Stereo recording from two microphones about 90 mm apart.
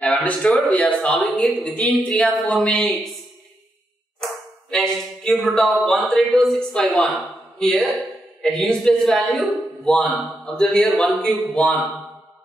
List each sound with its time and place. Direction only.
0.0 s a sound: 10° left (ahead or behind)
0.7 s speech: 15° left (ahead or behind)
4.2 s speech: 5° left (ahead or behind)